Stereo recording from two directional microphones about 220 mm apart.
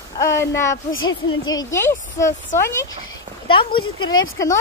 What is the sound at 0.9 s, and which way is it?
Speech, 65° left (ahead or behind).